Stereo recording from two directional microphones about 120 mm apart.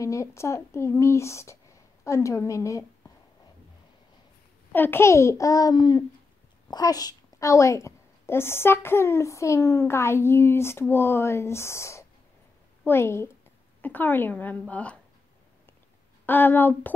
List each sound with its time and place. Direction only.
0.0 s a woman's voice: 25° left (ahead or behind)
4.7 s a woman's voice: 15° left (ahead or behind)
16.3 s a woman's voice: 15° left (ahead or behind)